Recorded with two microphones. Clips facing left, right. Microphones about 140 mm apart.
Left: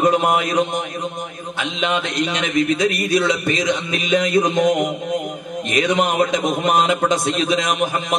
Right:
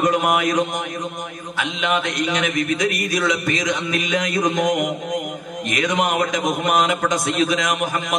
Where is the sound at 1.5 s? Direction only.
25° left (ahead or behind).